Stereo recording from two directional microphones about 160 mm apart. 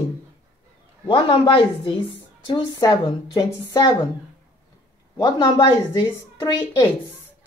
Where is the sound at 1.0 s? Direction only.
30° left (ahead or behind).